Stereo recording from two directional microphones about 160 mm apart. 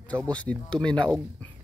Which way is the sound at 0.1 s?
10° left (ahead or behind).